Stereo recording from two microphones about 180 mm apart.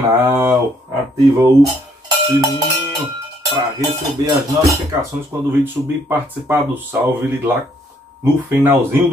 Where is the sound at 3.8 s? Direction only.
20° right (ahead or behind).